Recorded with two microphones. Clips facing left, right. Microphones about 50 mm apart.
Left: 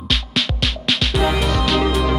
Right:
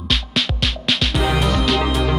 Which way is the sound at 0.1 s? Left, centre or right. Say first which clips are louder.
Even; centre.